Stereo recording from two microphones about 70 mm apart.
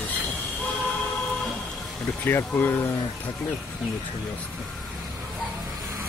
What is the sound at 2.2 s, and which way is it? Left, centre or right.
Speech, left.